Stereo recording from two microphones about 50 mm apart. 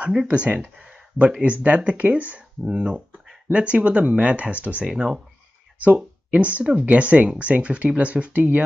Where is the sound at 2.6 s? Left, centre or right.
Centre.